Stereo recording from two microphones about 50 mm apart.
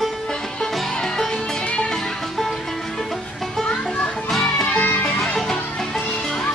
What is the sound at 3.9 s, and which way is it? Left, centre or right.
Children playing, centre.